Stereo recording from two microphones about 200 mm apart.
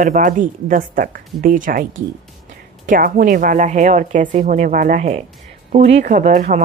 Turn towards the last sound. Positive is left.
turn(degrees=-40)  # may be behind; listen again after turning